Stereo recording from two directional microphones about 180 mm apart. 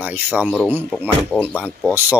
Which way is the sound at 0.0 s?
10° right (ahead or behind).